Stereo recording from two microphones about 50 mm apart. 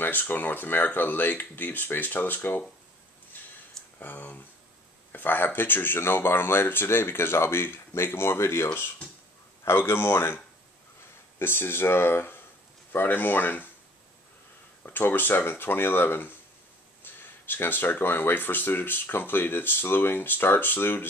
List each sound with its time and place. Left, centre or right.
0.0 s speech: left
4.0 s speech: left
9.7 s speech: left
14.8 s speech: left